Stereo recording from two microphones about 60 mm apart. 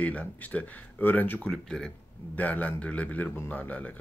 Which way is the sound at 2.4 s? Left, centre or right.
Left.